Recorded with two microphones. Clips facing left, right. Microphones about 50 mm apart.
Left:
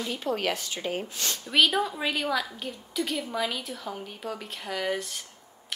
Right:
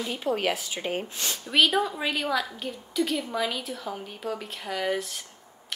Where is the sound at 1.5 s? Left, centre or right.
Centre.